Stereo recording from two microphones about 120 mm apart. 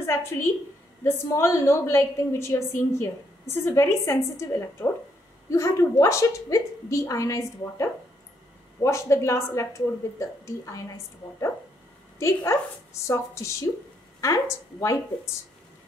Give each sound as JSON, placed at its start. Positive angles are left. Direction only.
{"t": 0.0, "sound": "a woman's voice", "side_deg": 20}
{"t": 12.2, "sound": "a woman's voice", "side_deg": 25}